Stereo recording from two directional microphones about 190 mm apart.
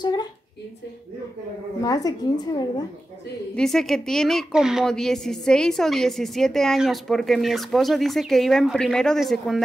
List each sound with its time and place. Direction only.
0.0 s a sound: 20° left (ahead or behind)
1.8 s a woman's voice: 20° left (ahead or behind)
3.5 s a woman's voice: centre (ahead or behind)